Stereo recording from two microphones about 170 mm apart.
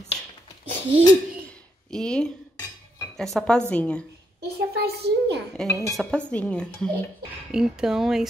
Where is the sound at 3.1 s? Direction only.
Centre (ahead or behind).